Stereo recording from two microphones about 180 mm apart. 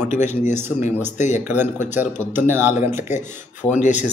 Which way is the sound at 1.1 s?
40° left (ahead or behind).